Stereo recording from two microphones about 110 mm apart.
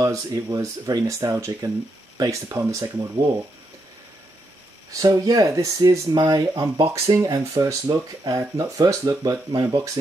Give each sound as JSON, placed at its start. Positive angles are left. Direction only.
{"t": 0.0, "sound": "speech", "side_deg": -30}
{"t": 4.9, "sound": "speech", "side_deg": -35}